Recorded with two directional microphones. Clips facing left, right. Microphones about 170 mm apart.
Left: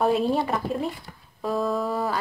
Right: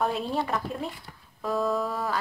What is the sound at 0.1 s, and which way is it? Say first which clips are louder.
Speech: left 6 dB; 15° left (ahead or behind).